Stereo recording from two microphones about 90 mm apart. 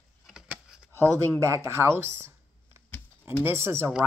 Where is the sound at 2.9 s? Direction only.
15° left (ahead or behind).